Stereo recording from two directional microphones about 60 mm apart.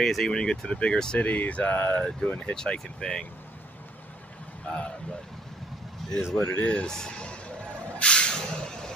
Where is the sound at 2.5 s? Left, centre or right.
Centre.